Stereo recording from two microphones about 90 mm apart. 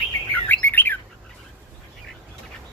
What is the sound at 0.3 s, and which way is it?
Bird, 20° left (ahead or behind).